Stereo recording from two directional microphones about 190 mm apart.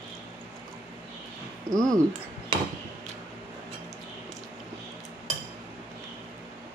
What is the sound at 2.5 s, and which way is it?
Cutlery, 25° right (ahead or behind).